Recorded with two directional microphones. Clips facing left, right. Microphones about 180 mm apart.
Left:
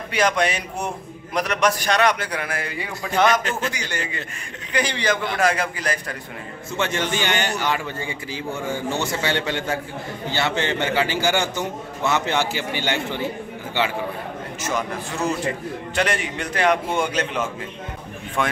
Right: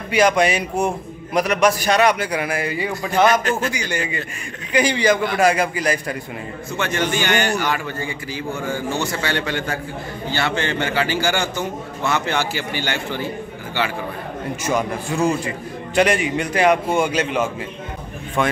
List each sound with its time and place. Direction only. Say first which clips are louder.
0.1 s a man's voice: right 5 dB; 10° right (ahead or behind)
6.8 s a man's voice: right 2 dB; 25° left (ahead or behind)
14.6 s a man's voice: right 4 dB; 15° right (ahead or behind)